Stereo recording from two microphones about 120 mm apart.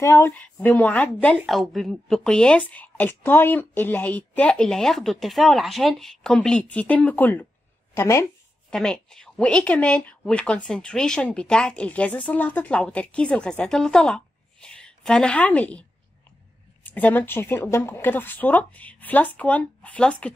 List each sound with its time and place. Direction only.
0.0 s speech: 25° left (ahead or behind)
0.3 s speech: 15° left (ahead or behind)
1.4 s speech: centre (ahead or behind); by 8.3 s 20° left (ahead or behind)
8.6 s speech: 5° left (ahead or behind)
16.8 s speech: 15° left (ahead or behind)